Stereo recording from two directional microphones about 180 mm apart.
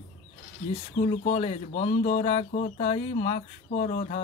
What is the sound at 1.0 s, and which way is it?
Speech, 40° left (ahead or behind).